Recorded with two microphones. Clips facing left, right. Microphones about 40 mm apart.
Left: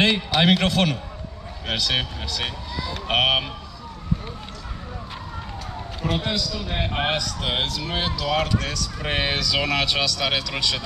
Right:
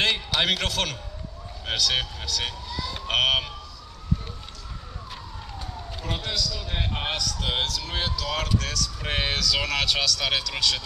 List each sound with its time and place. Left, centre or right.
0.0 s speech: centre
6.0 s speech: centre